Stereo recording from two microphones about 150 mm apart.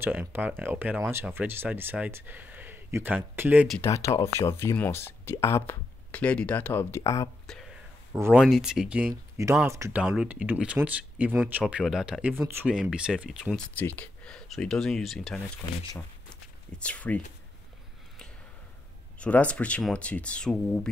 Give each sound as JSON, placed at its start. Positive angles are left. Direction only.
{"t": 0.0, "sound": "speech", "side_deg": -15}
{"t": 3.8, "sound": "speech", "side_deg": 20}
{"t": 7.4, "sound": "a sound", "side_deg": 5}
{"t": 8.1, "sound": "speech", "side_deg": -15}
{"t": 8.4, "sound": "speech", "side_deg": -5}
{"t": 9.1, "sound": "speech", "side_deg": -20}
{"t": 10.0, "sound": "speech", "side_deg": -10}
{"t": 13.7, "sound": "speech", "side_deg": 10}
{"t": 16.3, "sound": "a sound", "side_deg": 5}
{"t": 19.1, "sound": "speech", "side_deg": 10}